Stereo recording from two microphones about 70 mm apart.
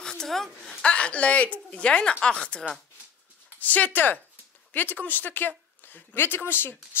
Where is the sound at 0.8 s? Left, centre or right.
Centre.